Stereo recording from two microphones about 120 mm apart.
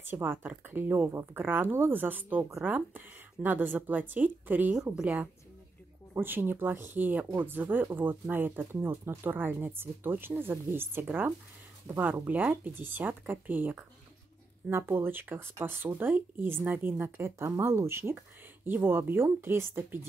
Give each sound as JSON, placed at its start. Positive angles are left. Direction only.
{"t": 0.0, "sound": "speech", "side_deg": -20}